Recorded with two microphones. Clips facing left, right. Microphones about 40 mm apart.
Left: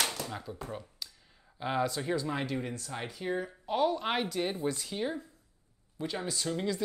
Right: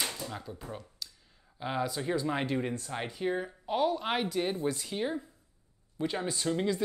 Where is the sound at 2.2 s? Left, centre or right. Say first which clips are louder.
Right 3 dB; centre.